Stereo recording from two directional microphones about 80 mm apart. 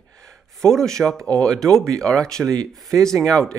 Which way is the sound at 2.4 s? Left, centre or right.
Right.